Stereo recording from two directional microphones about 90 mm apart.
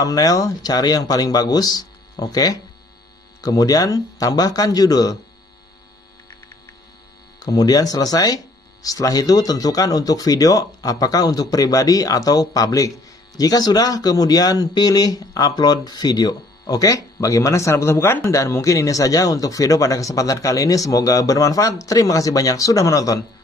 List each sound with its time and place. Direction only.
0.0 s speech: 45° left (ahead or behind)
7.3 s speech: 45° left (ahead or behind)